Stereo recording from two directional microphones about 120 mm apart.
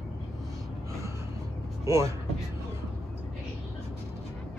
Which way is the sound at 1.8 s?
25° right (ahead or behind).